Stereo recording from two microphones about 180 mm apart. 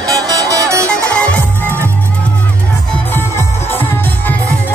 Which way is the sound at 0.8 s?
5° left (ahead or behind).